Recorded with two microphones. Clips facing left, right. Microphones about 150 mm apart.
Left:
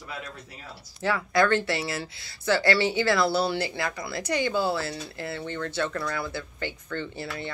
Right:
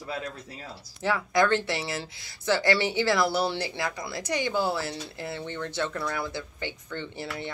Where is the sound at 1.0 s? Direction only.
15° right (ahead or behind).